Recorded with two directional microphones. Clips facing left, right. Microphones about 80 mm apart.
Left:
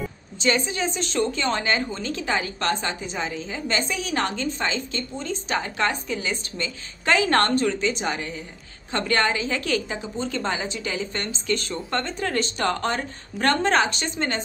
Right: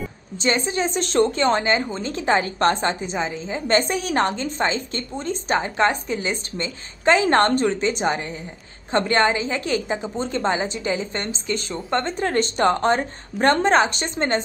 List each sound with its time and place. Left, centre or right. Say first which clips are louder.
0.4 s a woman's voice: right 2 dB; right
0.9 s speech: right 9 dB; right
1.5 s a woman's voice: right 4 dB; right
3.2 s a woman's voice: right 3 dB; right
3.6 s a woman's voice: right 7 dB; right
7.5 s a woman's voice: right 2 dB; right; by 11.7 s centre
12.0 s a woman's voice: right 5 dB; right